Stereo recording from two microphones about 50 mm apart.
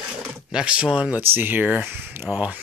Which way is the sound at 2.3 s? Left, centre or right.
Left.